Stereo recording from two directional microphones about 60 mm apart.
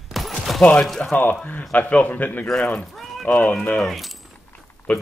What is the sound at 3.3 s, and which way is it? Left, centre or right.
Speech, left.